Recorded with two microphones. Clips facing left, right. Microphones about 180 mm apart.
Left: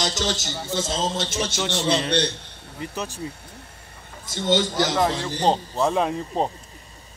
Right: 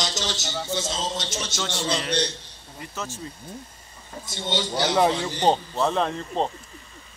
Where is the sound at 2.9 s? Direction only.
15° left (ahead or behind).